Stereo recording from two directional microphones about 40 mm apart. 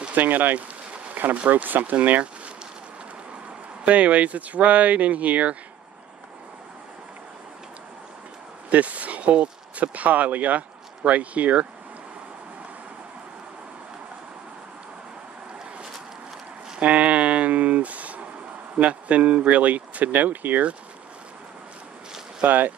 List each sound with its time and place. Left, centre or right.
0.1 s speech: right
1.3 s speech: right
3.8 s speech: right
8.6 s speech: right
16.8 s a sound: right
18.8 s speech: right
22.4 s speech: right